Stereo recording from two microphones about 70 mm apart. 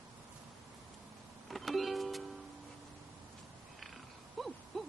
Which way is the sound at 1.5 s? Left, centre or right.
Centre.